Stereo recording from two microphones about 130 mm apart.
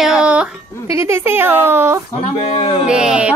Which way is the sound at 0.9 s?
20° right (ahead or behind).